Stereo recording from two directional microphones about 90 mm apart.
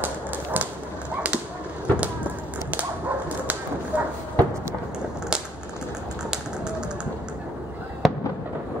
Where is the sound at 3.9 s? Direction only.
15° right (ahead or behind).